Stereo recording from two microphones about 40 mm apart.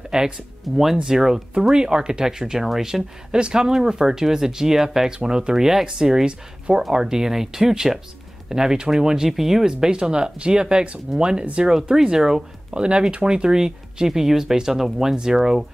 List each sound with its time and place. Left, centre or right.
0.1 s speech: centre
0.7 s speech: centre
1.0 s speech: centre
11.7 s speech: centre
12.7 s speech: right